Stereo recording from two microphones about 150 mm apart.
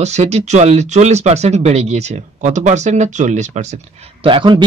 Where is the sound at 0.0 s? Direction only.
50° right (ahead or behind).